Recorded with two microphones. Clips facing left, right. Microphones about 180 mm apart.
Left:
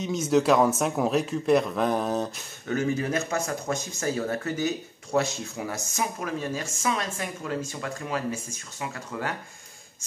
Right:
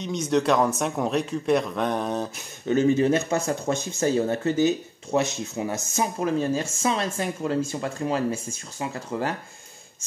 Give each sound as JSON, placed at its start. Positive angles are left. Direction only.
{"t": 0.0, "sound": "a man's voice", "side_deg": 5}
{"t": 2.6, "sound": "speech", "side_deg": -20}